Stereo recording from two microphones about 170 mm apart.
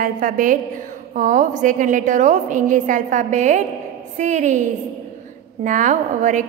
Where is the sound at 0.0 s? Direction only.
50° right (ahead or behind).